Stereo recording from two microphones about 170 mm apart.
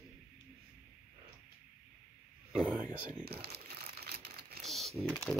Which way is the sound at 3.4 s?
70° right (ahead or behind).